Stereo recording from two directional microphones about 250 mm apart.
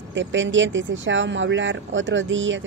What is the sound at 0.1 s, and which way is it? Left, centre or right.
Speech, right.